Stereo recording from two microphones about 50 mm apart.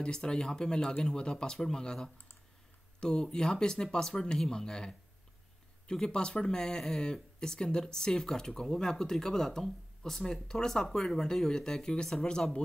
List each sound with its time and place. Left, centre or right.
0.0 s speech: centre